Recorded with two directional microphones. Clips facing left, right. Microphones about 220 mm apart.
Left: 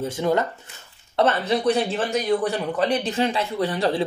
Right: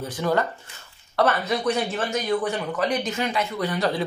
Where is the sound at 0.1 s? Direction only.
20° left (ahead or behind).